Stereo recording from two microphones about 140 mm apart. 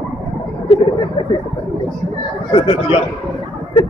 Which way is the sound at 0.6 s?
40° left (ahead or behind).